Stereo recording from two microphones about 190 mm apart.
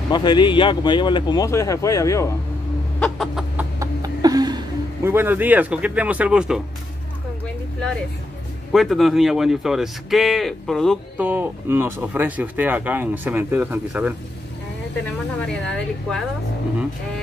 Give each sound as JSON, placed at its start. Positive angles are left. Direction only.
{"t": 0.1, "sound": "speech", "side_deg": 25}
{"t": 3.0, "sound": "chicken", "side_deg": 0}
{"t": 3.8, "sound": "a sound", "side_deg": -20}
{"t": 5.1, "sound": "speech", "side_deg": -10}
{"t": 8.7, "sound": "speech", "side_deg": 0}
{"t": 11.1, "sound": "speech", "side_deg": -10}
{"t": 15.4, "sound": "speech", "side_deg": 5}